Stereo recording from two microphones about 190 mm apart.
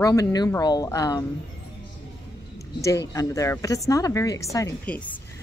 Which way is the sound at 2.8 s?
15° left (ahead or behind).